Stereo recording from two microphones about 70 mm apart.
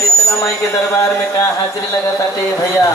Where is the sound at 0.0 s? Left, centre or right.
Left.